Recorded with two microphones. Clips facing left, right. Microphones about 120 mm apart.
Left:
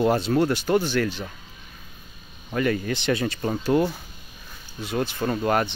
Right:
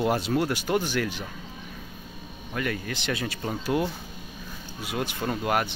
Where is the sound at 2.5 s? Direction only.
Centre (ahead or behind).